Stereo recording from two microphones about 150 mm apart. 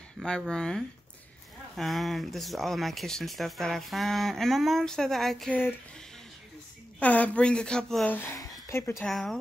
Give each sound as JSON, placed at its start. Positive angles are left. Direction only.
{"t": 0.2, "sound": "speech", "side_deg": 5}
{"t": 7.0, "sound": "a woman's voice", "side_deg": 10}
{"t": 8.4, "sound": "a sound", "side_deg": 20}
{"t": 8.9, "sound": "speech", "side_deg": 0}